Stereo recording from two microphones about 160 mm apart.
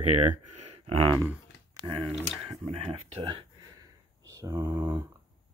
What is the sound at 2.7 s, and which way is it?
Speech, 40° right (ahead or behind).